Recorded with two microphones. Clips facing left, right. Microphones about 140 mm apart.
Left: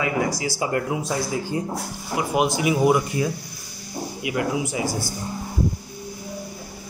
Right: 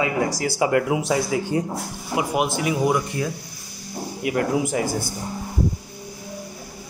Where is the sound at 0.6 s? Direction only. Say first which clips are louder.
Right 7 dB; 90° right.